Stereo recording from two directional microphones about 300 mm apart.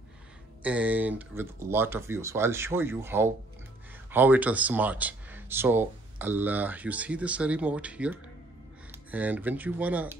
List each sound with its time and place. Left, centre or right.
0.6 s speech: centre